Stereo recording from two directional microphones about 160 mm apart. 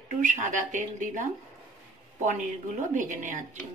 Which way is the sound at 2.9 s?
55° right (ahead or behind).